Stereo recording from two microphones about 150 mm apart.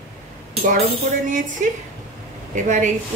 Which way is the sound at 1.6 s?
60° right (ahead or behind).